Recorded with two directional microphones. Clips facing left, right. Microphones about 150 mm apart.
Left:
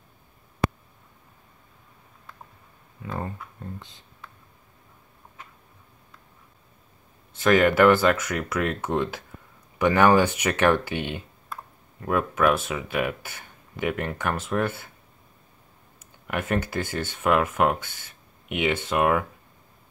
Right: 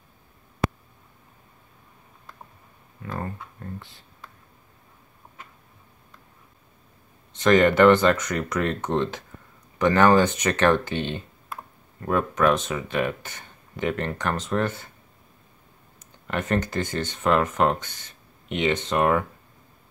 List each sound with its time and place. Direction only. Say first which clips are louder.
3.0 s a sound: even; 15° left (ahead or behind)
3.5 s speech: right 1 dB; 20° left (ahead or behind)
7.3 s speech: right 1 dB; 5° left (ahead or behind)
16.3 s speech: right 1 dB; 10° left (ahead or behind)